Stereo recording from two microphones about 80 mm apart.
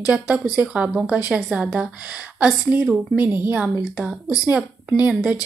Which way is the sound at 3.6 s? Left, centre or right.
Centre.